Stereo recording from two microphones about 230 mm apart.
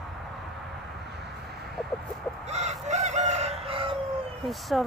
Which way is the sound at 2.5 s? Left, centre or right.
Right.